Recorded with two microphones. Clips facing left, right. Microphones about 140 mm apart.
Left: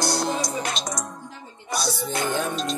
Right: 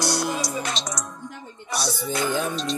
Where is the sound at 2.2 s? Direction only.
50° left (ahead or behind).